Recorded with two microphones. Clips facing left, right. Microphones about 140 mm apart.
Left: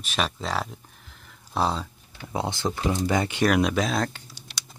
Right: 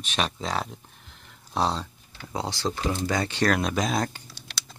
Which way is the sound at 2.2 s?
20° left (ahead or behind).